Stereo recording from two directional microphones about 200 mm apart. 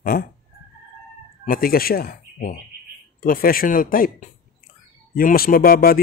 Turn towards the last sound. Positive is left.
turn(degrees=45)  # may be behind; listen again after turning